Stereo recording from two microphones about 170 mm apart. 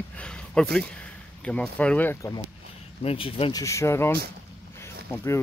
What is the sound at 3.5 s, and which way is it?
Speech, 20° left (ahead or behind).